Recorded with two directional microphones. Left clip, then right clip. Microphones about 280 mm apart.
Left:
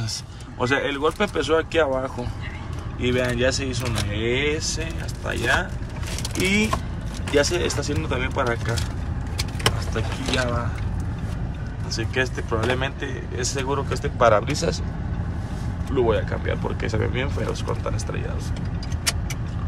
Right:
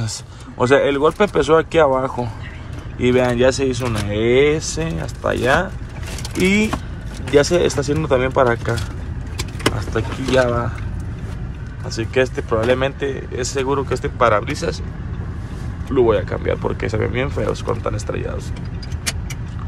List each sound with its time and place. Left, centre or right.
0.6 s speech: centre
9.9 s speech: centre
11.9 s speech: centre
15.9 s speech: centre